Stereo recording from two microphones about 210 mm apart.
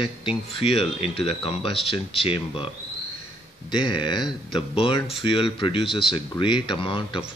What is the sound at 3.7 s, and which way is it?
Speech, 25° left (ahead or behind).